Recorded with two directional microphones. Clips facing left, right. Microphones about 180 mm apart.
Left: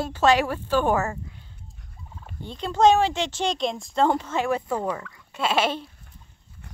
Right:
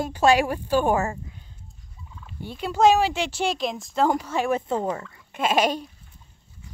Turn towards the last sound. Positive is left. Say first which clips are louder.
# right 2 dB
turn(degrees=-15)  # may be behind; listen again after turning